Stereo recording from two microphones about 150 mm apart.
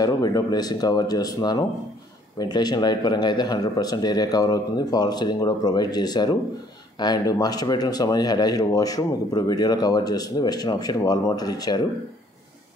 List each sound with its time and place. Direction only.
0.0 s speech: 25° left (ahead or behind)